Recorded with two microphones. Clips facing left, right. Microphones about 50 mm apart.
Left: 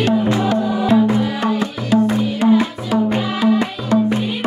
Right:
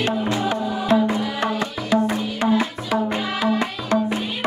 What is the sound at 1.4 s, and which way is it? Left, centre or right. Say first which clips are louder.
Music: left 4 dB; right.